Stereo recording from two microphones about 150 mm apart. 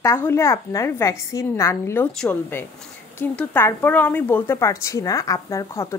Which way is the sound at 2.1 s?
5° left (ahead or behind).